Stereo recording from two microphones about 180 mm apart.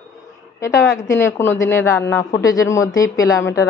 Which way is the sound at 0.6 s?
15° left (ahead or behind).